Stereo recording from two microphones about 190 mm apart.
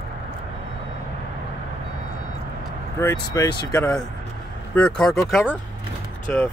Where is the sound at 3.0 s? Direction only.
15° left (ahead or behind).